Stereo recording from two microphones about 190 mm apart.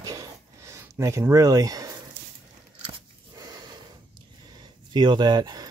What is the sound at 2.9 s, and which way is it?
Biting, 20° right (ahead or behind).